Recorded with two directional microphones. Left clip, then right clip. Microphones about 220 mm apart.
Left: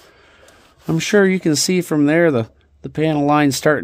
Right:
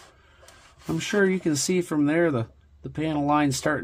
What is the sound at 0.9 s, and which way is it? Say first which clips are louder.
Speech: left 8 dB; 55° left (ahead or behind).